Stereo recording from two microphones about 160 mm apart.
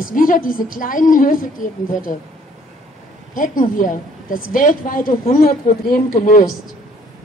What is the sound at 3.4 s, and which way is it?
A woman's voice, 55° left (ahead or behind).